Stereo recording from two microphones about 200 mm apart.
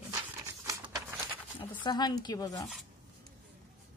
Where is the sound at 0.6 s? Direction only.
15° right (ahead or behind).